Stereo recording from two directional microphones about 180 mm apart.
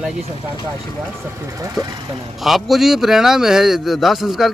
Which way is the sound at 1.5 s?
20° right (ahead or behind).